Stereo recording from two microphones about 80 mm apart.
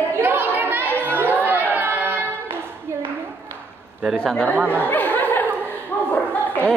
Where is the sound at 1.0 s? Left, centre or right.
Right.